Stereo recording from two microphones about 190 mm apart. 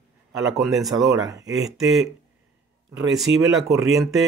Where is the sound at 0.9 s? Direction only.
20° right (ahead or behind).